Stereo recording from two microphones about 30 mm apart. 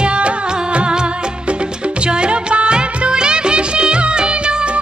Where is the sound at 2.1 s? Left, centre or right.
Right.